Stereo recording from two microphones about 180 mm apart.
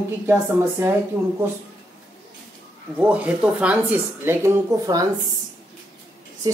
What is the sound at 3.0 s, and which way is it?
Speech, 10° right (ahead or behind).